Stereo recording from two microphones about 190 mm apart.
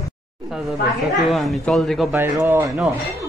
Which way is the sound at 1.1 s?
Centre (ahead or behind).